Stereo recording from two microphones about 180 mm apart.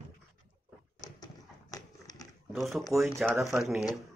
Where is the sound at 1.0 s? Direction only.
20° left (ahead or behind).